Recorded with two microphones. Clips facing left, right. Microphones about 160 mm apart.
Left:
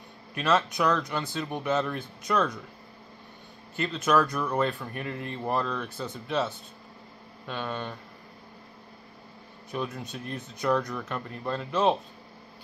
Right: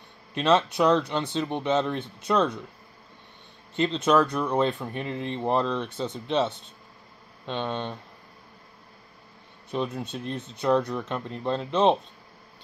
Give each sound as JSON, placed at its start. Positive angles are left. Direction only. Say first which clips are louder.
{"t": 0.3, "sound": "a man's voice", "louder": "right 4 dB", "side_deg": -25}
{"t": 3.7, "sound": "speech", "louder": "right 3 dB", "side_deg": -25}
{"t": 9.7, "sound": "speech", "louder": "right 4 dB", "side_deg": -25}